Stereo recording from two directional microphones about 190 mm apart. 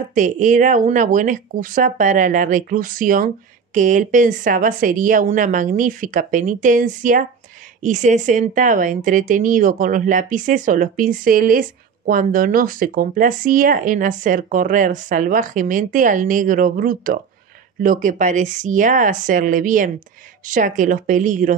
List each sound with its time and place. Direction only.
0.1 s speech: 40° right (ahead or behind)